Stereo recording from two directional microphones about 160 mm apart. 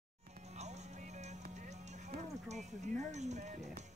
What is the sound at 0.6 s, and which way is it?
Music, 45° right (ahead or behind).